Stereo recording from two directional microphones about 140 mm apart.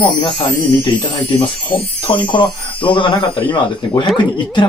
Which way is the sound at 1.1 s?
35° left (ahead or behind).